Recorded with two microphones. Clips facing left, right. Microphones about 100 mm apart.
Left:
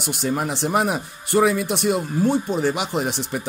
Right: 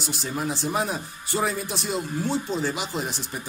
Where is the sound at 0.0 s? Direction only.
60° left (ahead or behind).